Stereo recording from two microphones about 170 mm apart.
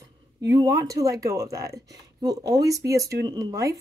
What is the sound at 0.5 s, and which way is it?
Speech, 20° right (ahead or behind).